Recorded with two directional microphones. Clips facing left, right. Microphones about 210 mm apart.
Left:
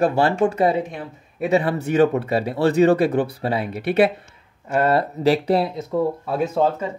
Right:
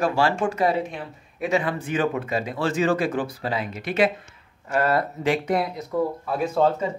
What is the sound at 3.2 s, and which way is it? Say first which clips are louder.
Speech: left 4 dB; 60° left (ahead or behind).